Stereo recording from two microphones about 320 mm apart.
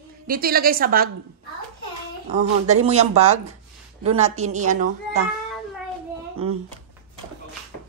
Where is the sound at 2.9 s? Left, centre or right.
Centre.